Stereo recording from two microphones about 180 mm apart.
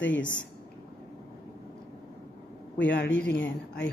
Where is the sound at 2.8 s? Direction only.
90° left.